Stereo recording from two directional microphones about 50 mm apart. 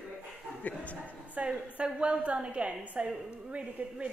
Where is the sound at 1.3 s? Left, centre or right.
Right.